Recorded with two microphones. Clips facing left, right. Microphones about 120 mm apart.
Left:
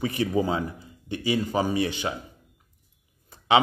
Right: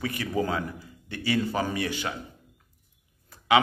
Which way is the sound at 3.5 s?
25° left (ahead or behind).